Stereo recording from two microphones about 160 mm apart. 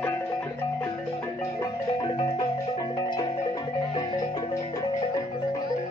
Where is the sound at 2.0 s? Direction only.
35° left (ahead or behind).